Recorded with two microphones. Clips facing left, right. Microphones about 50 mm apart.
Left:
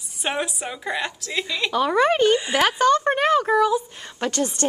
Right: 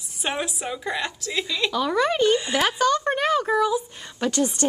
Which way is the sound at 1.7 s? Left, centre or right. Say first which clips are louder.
Left 4 dB; left.